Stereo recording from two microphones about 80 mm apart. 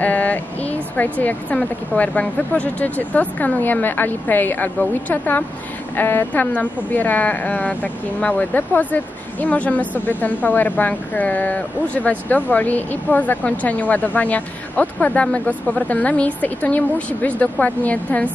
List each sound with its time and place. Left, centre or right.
0.0 s vehicle: centre
0.9 s a woman's voice: left